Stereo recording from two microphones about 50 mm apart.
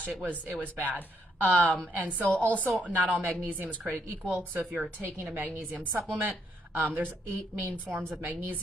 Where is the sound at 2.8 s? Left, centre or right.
Right.